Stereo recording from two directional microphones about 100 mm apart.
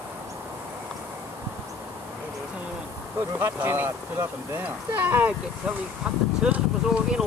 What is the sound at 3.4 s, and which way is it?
Speech, 25° right (ahead or behind).